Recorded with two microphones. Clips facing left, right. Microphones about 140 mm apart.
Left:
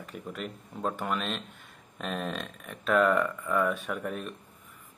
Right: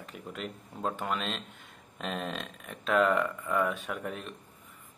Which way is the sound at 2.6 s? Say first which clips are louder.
Left 2 dB; 25° right (ahead or behind).